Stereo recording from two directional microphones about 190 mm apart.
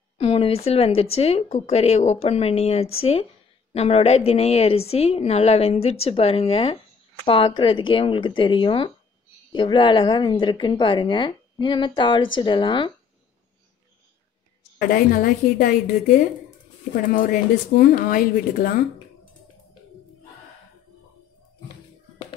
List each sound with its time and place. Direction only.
0.2 s a woman's voice: 30° left (ahead or behind)
14.8 s speech: 50° left (ahead or behind)
16.9 s speech: 45° left (ahead or behind)